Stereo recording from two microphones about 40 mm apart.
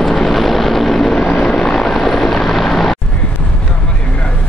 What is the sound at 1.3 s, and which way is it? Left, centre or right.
Vehicle, centre.